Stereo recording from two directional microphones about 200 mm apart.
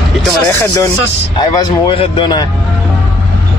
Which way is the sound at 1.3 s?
20° left (ahead or behind).